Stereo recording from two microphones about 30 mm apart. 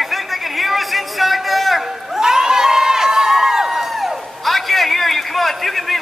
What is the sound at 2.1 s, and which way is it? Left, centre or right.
Crowd, centre.